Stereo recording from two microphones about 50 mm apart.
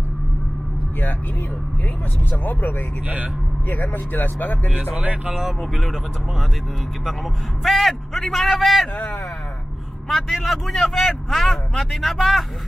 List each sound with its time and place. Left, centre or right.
3.6 s speech: left
4.9 s speech: right
7.6 s speech: centre
10.0 s speech: centre